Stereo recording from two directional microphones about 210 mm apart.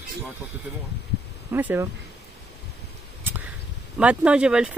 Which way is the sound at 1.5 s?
10° right (ahead or behind).